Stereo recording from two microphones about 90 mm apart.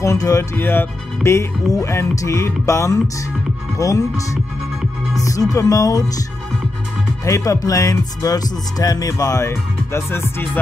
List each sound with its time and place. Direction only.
0.0 s speech: 35° left (ahead or behind)
0.6 s speech: 25° left (ahead or behind); by 6.2 s 40° left (ahead or behind)
7.2 s speech: 40° left (ahead or behind)